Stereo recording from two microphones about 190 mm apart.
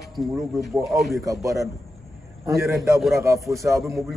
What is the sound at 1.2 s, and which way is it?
A man's voice, 15° right (ahead or behind).